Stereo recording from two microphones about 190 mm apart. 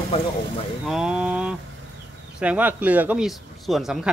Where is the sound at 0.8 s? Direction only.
5° right (ahead or behind).